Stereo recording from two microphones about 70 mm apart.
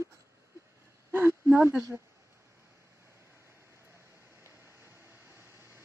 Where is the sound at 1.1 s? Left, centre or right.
Right.